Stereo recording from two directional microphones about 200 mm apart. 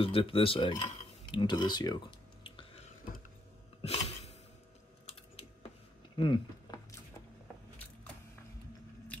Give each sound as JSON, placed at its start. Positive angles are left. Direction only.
{"t": 0.0, "sound": "speech", "side_deg": 25}
{"t": 3.8, "sound": "a sound", "side_deg": 30}
{"t": 6.1, "sound": "speech", "side_deg": 25}